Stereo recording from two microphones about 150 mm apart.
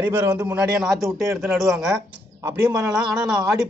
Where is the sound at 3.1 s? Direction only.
5° right (ahead or behind).